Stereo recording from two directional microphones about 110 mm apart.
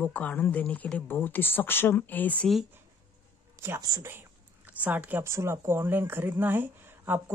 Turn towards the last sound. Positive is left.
turn(degrees=-20)  # may be behind; listen again after turning